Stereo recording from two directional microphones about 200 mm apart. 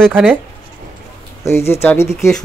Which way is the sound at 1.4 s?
10° left (ahead or behind).